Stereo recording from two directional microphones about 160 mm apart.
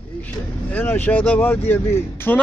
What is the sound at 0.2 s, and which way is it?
Speech, 10° left (ahead or behind).